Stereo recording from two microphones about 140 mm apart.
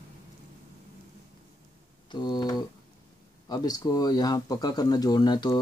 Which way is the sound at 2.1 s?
30° left (ahead or behind).